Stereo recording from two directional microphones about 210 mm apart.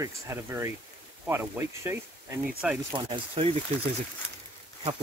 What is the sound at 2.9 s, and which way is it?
Speech, 25° right (ahead or behind).